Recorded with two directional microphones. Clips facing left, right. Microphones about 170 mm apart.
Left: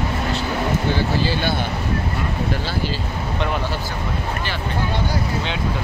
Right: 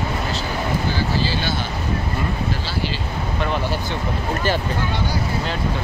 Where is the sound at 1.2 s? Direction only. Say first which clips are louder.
Left 2 dB; 55° left (ahead or behind).